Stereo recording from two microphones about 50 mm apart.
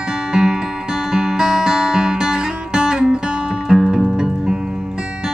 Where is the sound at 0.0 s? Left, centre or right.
Centre.